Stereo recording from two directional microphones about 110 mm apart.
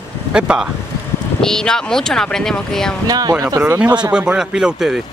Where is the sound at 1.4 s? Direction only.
5° left (ahead or behind).